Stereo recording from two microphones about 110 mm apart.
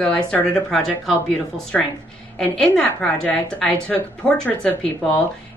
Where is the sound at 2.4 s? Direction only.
10° left (ahead or behind).